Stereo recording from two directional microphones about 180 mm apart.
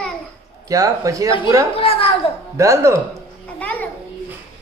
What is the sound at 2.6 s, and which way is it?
Speech, 15° right (ahead or behind).